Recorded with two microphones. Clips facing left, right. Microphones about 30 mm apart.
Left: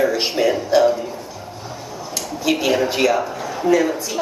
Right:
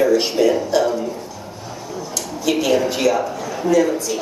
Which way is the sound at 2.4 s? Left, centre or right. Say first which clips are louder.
Right 1 dB; centre.